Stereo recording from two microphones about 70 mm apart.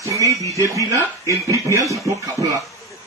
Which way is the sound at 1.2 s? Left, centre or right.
Right.